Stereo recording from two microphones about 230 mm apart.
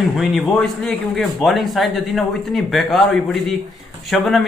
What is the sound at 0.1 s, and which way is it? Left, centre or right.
A man's voice, centre.